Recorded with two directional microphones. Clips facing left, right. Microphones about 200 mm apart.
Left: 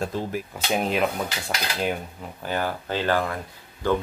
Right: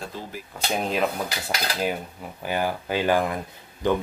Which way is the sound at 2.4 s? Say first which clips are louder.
Right 1 dB; 10° right (ahead or behind).